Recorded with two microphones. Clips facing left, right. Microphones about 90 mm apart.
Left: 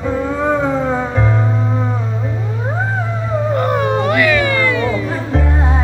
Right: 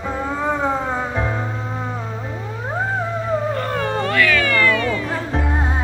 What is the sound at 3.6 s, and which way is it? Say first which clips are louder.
Cat: left 6 dB; 20° left (ahead or behind).